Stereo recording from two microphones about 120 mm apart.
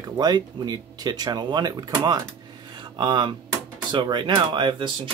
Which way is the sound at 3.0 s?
40° right (ahead or behind).